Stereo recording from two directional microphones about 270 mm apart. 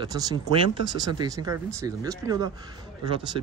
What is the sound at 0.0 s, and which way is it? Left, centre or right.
Speech, centre.